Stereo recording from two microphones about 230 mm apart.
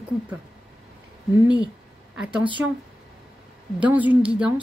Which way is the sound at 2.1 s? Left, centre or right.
Centre.